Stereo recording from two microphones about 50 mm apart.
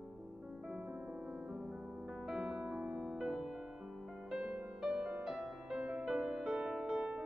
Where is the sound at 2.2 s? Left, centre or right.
Centre.